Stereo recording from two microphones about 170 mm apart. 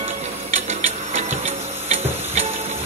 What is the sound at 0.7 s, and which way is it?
Music, 40° right (ahead or behind).